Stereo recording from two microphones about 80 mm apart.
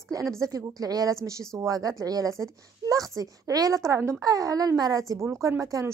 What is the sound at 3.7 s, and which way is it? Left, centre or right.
A woman's voice, right.